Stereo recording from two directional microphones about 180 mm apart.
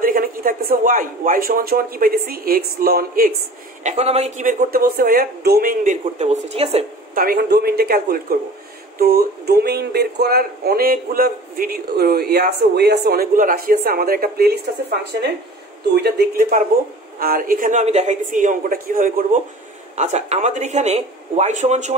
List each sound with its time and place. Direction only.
0.0 s speech: 50° right (ahead or behind)
3.8 s speech: 35° right (ahead or behind); by 5.9 s 50° right (ahead or behind)
6.1 s speech: 35° right (ahead or behind)
7.2 s speech: 55° right (ahead or behind)
20.0 s speech: 40° right (ahead or behind)